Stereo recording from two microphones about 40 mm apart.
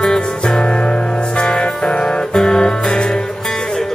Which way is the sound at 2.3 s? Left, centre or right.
Centre.